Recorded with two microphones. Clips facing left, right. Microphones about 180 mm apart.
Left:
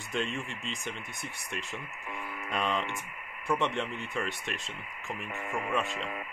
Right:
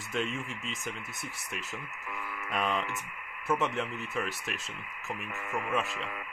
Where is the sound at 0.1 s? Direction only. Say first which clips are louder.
Even; centre (ahead or behind).